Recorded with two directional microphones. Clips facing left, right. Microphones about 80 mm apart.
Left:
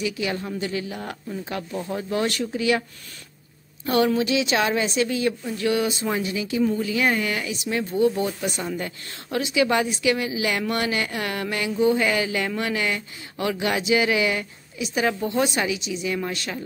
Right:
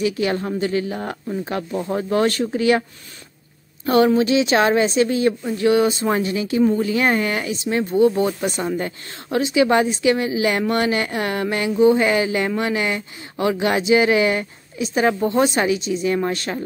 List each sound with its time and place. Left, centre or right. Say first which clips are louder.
0.0 s speech: right 6 dB; right
3.8 s speech: right 5 dB; right